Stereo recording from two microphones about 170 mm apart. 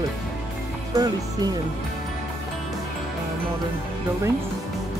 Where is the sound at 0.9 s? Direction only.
25° right (ahead or behind).